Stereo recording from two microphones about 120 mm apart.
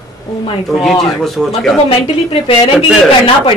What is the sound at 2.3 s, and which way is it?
Speech, 50° left (ahead or behind).